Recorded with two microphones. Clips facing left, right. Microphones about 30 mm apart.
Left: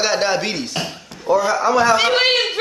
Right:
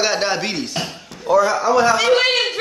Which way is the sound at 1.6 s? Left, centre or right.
Left.